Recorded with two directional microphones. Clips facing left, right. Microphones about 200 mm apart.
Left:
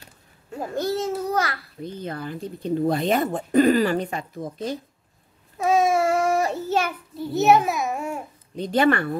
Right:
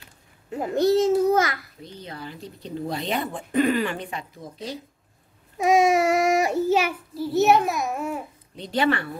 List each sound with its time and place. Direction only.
0.5 s babbling: 20° right (ahead or behind)
1.8 s speech: 50° left (ahead or behind)
5.6 s child singing: 15° right (ahead or behind)
7.2 s a child's voice: centre (ahead or behind)
8.5 s speech: 50° left (ahead or behind)